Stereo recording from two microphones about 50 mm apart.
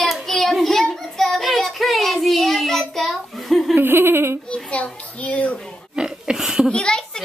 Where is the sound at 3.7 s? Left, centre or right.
Right.